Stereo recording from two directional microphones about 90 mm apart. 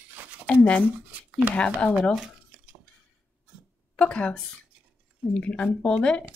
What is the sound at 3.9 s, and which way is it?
Speech, 10° left (ahead or behind).